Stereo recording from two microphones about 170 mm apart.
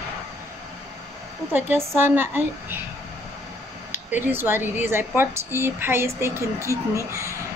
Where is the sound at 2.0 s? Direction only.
10° right (ahead or behind).